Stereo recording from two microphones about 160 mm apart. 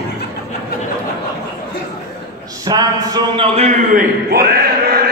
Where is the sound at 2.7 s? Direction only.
25° right (ahead or behind).